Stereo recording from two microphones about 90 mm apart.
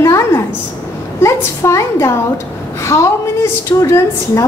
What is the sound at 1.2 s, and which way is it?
Speech, 35° left (ahead or behind).